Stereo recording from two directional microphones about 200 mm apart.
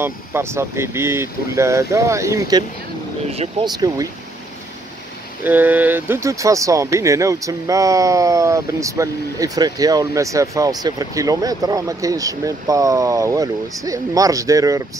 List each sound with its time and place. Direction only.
0.0 s speech: 10° right (ahead or behind)
5.4 s speech: 10° right (ahead or behind)